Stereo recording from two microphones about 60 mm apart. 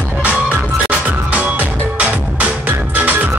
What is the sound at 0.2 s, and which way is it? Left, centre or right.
Music, right.